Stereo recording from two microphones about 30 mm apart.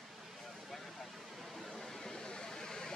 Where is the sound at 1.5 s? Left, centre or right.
Centre.